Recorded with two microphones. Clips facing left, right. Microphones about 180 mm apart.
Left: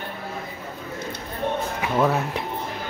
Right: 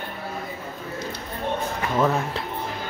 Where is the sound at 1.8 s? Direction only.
10° left (ahead or behind).